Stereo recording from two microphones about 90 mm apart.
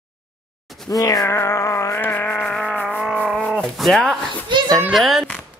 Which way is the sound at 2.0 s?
20° left (ahead or behind).